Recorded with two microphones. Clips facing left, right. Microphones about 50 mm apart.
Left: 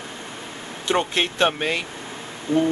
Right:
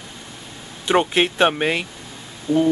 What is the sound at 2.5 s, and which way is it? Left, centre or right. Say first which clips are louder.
Speech: right 2 dB; left.